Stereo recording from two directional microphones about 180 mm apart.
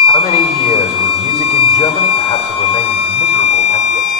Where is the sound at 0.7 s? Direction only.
35° left (ahead or behind).